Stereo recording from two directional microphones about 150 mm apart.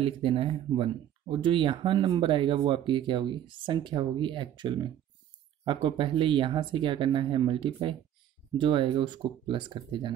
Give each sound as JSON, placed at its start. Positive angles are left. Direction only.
{"t": 0.0, "sound": "speech", "side_deg": -35}